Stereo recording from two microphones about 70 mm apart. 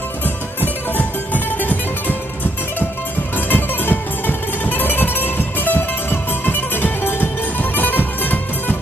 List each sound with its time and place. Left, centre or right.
0.6 s music: left